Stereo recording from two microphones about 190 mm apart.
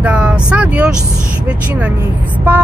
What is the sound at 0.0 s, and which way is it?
Vehicle, 5° right (ahead or behind).